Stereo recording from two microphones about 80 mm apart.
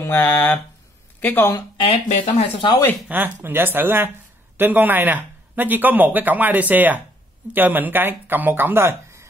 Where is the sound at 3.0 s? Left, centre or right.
Right.